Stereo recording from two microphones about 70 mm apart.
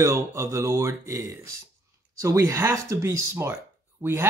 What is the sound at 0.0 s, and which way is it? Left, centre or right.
Speech, right.